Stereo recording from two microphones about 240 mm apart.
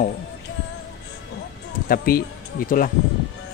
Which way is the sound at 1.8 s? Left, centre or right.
Left.